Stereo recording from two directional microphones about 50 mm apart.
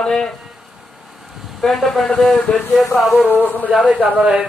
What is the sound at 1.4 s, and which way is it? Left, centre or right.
A man's voice, centre.